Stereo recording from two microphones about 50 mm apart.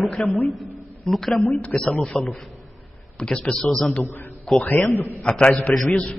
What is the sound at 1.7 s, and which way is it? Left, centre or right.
Speech, left.